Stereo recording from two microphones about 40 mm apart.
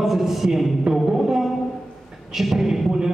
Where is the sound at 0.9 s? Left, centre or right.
Centre.